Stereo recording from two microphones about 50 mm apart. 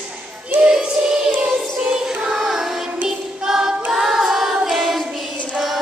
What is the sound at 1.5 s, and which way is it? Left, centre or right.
Music, centre.